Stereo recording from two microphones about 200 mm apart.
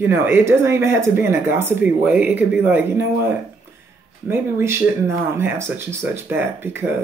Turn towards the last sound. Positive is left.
turn(degrees=-10)  # may be behind; listen again after turning